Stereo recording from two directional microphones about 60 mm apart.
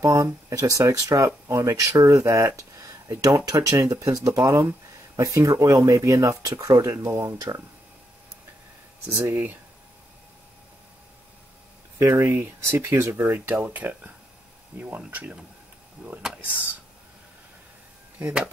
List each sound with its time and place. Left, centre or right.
0.0 s speech: right
2.0 s speech: right
3.3 s speech: right
7.2 s speech: right
9.1 s speech: right
12.0 s speech: right
13.5 s speech: right